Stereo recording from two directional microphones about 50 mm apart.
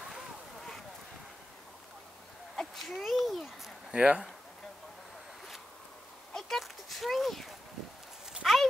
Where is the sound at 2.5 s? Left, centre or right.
Centre.